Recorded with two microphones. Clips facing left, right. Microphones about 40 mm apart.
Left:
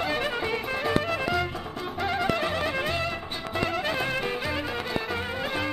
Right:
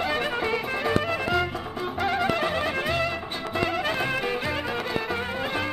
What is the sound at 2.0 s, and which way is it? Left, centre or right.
Music, centre.